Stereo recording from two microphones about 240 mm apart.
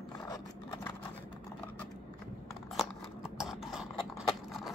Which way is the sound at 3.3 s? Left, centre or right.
Centre.